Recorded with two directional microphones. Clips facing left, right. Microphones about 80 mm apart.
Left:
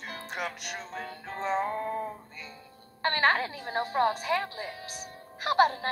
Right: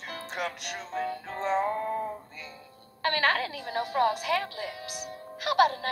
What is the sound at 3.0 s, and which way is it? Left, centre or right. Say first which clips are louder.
A woman's voice: left 1 dB; left.